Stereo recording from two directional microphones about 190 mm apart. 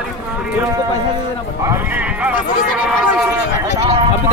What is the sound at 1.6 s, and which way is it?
Speech, 10° right (ahead or behind).